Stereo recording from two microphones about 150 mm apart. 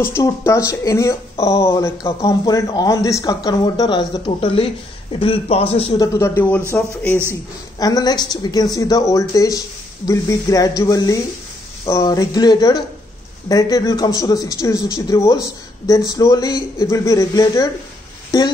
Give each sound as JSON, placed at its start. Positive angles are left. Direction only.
{"t": 0.0, "sound": "a man's voice", "side_deg": 20}
{"t": 5.9, "sound": "speech", "side_deg": 20}
{"t": 7.8, "sound": "speech", "side_deg": 25}